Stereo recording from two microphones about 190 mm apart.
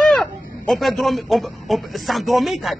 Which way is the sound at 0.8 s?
Centre (ahead or behind).